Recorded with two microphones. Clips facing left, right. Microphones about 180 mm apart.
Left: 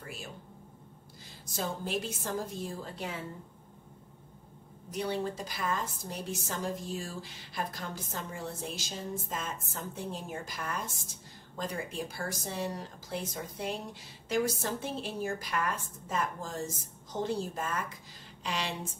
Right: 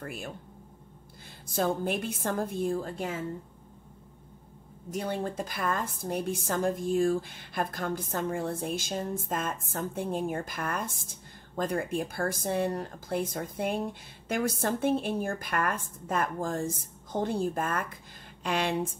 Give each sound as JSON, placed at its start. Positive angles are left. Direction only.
{"t": 0.0, "sound": "a woman's voice", "side_deg": -55}
{"t": 1.5, "sound": "a woman's voice", "side_deg": -55}
{"t": 4.9, "sound": "a woman's voice", "side_deg": -50}